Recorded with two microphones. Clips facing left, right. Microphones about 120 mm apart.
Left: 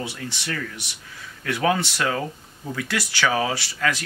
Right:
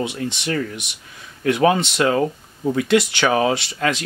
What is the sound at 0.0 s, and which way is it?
Speech, 20° right (ahead or behind).